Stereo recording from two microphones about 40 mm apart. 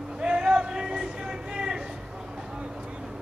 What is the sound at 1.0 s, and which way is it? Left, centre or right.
Vehicle, centre.